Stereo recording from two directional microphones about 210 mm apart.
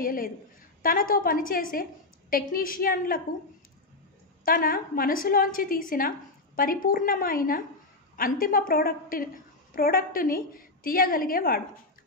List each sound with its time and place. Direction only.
0.0 s a woman's voice: 40° left (ahead or behind)
4.5 s a woman's voice: 45° left (ahead or behind)